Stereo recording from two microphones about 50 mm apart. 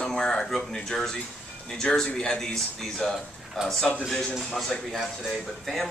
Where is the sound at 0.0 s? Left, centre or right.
Centre.